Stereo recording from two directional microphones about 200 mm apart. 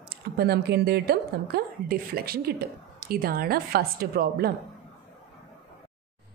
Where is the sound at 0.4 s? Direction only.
55° right (ahead or behind).